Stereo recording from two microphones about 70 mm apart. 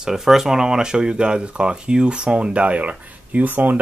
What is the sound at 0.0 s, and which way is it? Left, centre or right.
Speech, centre.